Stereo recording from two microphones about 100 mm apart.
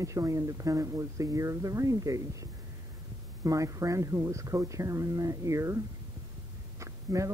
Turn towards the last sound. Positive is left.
turn(degrees=-30)  # may be behind; listen again after turning